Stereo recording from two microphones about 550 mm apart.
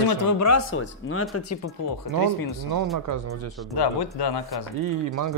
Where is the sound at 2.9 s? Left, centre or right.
Right.